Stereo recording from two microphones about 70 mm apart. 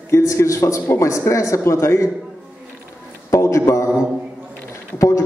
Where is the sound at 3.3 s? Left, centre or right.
Left.